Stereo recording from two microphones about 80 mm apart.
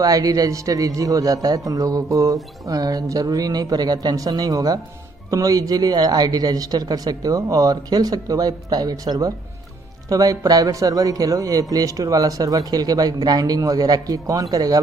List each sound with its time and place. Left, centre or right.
0.0 s speech: right